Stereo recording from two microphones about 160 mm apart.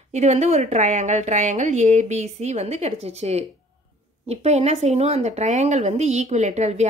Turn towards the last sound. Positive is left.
turn(degrees=-45)  # may be behind; listen again after turning